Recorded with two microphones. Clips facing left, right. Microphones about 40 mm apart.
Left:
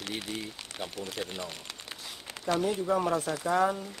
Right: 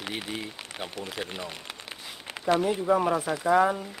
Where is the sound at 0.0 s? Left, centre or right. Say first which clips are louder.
Right 2 dB; centre.